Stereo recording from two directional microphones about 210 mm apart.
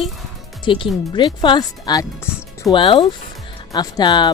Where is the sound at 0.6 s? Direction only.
25° left (ahead or behind).